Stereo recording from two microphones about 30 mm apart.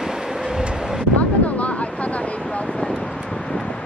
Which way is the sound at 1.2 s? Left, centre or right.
Left.